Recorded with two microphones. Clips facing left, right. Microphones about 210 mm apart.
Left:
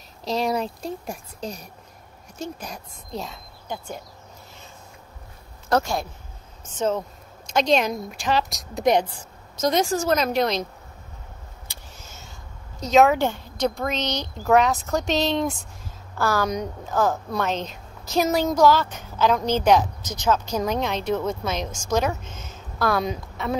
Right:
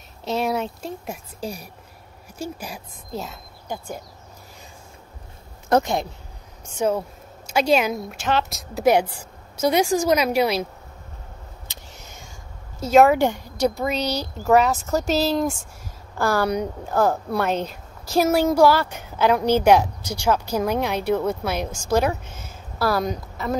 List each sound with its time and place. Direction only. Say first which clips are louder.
0.2 s a woman's voice: even; centre (ahead or behind)
5.7 s a woman's voice: right 3 dB; 20° right (ahead or behind)
12.0 s a sound: right 1 dB; 15° right (ahead or behind)
12.8 s a woman's voice: right 2 dB; 10° right (ahead or behind)